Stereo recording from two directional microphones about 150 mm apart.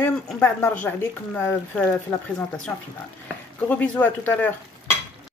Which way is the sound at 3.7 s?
10° left (ahead or behind).